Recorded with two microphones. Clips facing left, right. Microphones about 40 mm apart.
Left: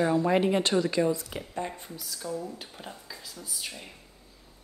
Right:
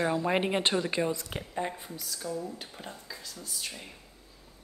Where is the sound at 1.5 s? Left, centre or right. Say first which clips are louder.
Right 1 dB; centre.